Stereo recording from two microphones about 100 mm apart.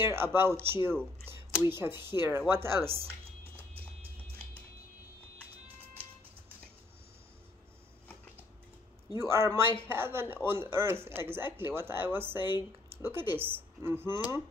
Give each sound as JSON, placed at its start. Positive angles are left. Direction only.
{"t": 0.0, "sound": "speech", "side_deg": -25}
{"t": 9.1, "sound": "speech", "side_deg": -30}